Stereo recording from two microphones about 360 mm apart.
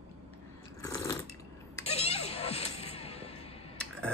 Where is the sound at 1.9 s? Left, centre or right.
Centre.